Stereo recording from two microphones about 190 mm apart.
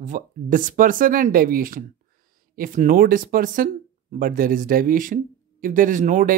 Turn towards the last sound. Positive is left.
turn(degrees=-40)  # may be behind; listen again after turning